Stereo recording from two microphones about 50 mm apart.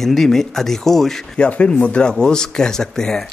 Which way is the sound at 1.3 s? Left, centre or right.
Left.